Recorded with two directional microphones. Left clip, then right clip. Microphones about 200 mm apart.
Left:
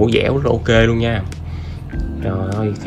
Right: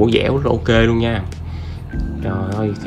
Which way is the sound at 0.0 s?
5° right (ahead or behind).